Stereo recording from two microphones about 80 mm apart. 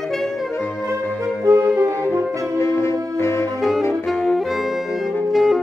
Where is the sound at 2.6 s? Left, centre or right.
Left.